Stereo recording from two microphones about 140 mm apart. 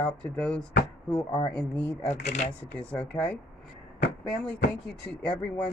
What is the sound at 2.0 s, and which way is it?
Speech, 50° left (ahead or behind).